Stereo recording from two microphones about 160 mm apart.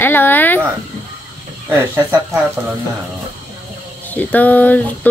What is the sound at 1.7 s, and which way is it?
Speech, 15° right (ahead or behind).